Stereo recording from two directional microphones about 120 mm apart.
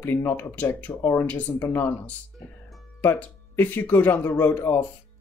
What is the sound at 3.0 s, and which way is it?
Speech, 15° left (ahead or behind).